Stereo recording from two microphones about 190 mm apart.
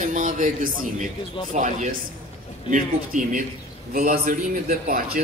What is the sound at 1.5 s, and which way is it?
A man's voice, 40° right (ahead or behind).